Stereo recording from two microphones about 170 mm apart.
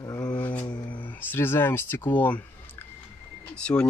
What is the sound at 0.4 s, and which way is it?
Mantra, 10° left (ahead or behind).